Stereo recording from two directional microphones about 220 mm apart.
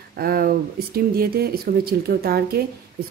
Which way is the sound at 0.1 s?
45° right (ahead or behind).